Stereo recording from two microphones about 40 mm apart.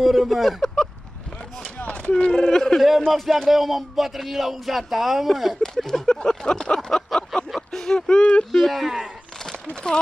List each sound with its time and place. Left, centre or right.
0.0 s speech: centre
1.9 s a sound: left
2.2 s speech: centre
3.1 s a sound: centre
5.6 s speech: centre
7.5 s a sound: centre
8.2 s speech: left
8.5 s speech: centre
8.7 s speech: centre
9.8 s speech: left